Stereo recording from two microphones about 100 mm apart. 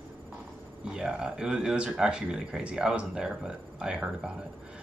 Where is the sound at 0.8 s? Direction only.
10° right (ahead or behind).